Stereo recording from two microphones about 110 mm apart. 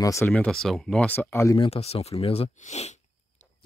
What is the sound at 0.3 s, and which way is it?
Speech, 5° left (ahead or behind).